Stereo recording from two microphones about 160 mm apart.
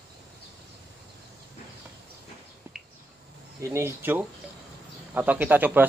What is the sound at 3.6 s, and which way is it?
Speech, 15° right (ahead or behind).